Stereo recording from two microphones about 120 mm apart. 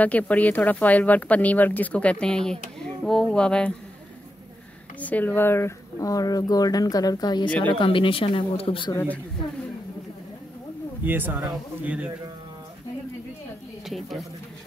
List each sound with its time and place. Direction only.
0.0 s speech: 10° left (ahead or behind)
5.0 s speech: 15° left (ahead or behind); by 7.4 s 35° left (ahead or behind)
7.4 s speech: 10° left (ahead or behind)
7.7 s speech: 45° left (ahead or behind)
11.1 s speech: 15° right (ahead or behind)
13.8 s a woman's voice: centre (ahead or behind)